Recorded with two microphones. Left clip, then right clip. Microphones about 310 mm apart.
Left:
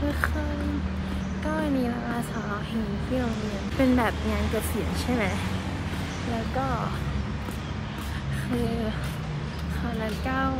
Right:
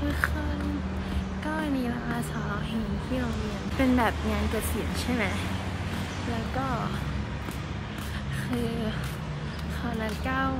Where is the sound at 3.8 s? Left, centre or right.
Centre.